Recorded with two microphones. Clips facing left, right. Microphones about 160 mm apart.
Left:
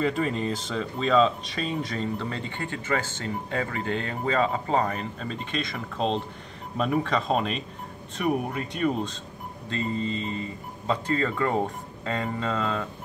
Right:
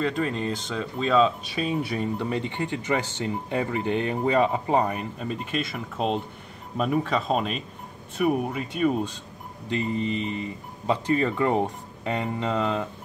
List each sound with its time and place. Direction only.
0.0 s speech: 5° left (ahead or behind)
9.7 s speech: 20° right (ahead or behind)